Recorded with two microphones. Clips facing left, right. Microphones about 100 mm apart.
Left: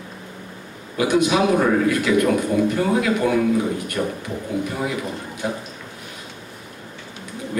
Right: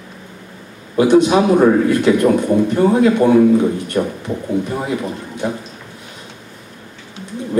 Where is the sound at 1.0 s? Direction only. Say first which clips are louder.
Right 7 dB; 30° right (ahead or behind).